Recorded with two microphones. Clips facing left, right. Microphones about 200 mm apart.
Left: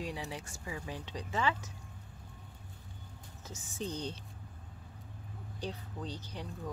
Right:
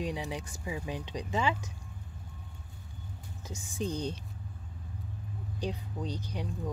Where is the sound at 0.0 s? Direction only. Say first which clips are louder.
Right 5 dB; 20° right (ahead or behind).